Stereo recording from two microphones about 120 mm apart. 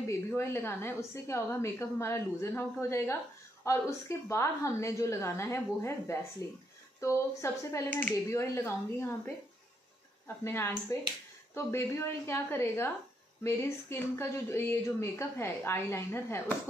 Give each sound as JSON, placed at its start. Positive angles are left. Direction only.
{"t": 0.3, "sound": "speech", "side_deg": 20}
{"t": 4.3, "sound": "speech", "side_deg": 25}